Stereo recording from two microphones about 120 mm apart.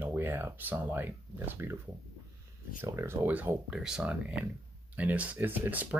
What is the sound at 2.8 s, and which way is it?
Speech, 20° right (ahead or behind).